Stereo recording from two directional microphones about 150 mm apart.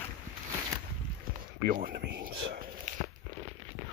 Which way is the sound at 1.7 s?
80° right.